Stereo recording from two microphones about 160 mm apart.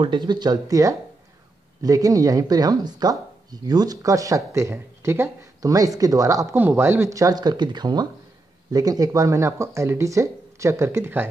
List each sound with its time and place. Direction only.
0.0 s speech: 30° right (ahead or behind)